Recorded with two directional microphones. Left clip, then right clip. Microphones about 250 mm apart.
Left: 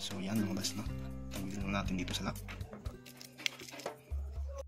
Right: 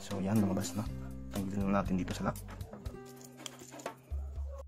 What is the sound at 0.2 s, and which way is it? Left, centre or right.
Speech, right.